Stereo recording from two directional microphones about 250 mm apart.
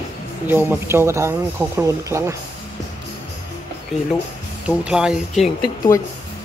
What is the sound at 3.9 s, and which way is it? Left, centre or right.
Speech, centre.